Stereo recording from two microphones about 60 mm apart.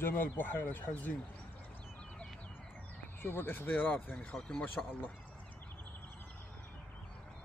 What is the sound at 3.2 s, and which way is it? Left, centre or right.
Speech, left.